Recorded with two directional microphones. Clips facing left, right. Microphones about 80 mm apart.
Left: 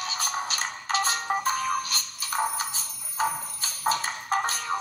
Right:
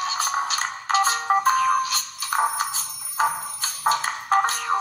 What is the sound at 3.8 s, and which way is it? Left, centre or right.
Music, right.